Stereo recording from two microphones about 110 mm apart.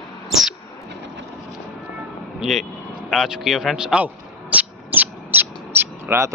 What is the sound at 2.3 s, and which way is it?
Speech, centre (ahead or behind).